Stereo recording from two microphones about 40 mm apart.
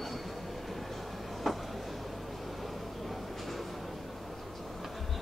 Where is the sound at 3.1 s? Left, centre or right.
Centre.